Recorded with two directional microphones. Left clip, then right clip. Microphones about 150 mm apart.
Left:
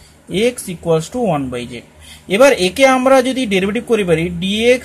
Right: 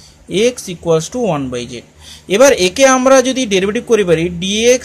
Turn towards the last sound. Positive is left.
turn(degrees=-10)  # may be behind; listen again after turning